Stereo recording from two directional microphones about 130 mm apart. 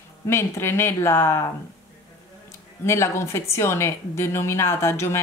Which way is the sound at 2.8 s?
20° left (ahead or behind).